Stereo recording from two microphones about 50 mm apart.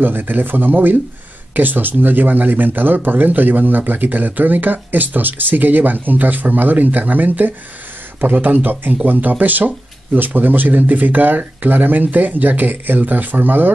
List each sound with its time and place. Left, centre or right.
0.0 s speech: right